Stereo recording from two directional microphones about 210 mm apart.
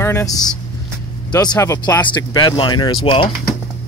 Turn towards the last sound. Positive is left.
turn(degrees=25)  # may be behind; listen again after turning